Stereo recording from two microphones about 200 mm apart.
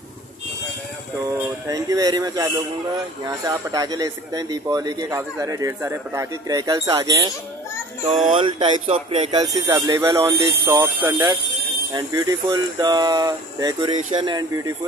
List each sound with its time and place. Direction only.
1.2 s speech: 15° right (ahead or behind)
8.1 s speech: 35° right (ahead or behind)
8.4 s speech: 25° right (ahead or behind)